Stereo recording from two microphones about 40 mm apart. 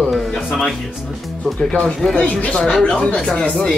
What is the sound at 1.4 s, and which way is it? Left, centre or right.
Speech, centre.